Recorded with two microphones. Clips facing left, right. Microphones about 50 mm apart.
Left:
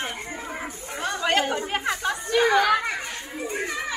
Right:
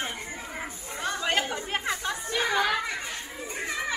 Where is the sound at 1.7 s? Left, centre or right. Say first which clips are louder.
Left 4 dB; centre.